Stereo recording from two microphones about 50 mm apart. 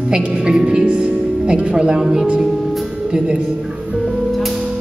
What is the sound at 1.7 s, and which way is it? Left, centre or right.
Speech, centre.